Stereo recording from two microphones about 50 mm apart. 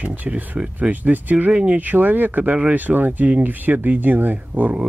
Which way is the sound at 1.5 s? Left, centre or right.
Right.